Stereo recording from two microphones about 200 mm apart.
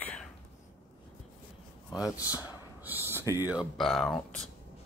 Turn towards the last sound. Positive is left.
turn(degrees=0)  # may be behind; listen again after turning